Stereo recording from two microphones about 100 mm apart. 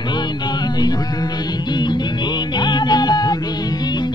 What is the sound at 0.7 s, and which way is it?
Music, 40° left (ahead or behind).